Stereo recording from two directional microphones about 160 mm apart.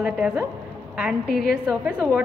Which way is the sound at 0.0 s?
5° right (ahead or behind).